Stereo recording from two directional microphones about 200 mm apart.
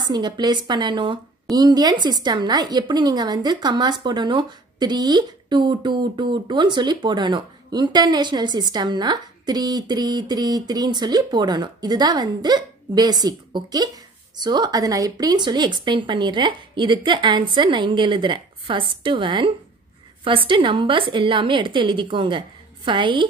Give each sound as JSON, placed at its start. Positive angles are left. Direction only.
{"t": 0.0, "sound": "a woman's voice", "side_deg": -20}